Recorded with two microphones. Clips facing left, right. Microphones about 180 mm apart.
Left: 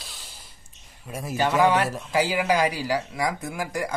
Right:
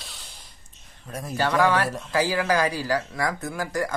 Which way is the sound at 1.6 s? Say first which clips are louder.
Left 1 dB; 20° left (ahead or behind).